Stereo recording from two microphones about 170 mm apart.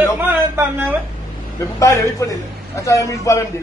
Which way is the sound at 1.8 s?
20° left (ahead or behind).